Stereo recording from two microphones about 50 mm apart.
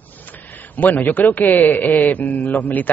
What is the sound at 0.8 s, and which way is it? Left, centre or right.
Speech, left.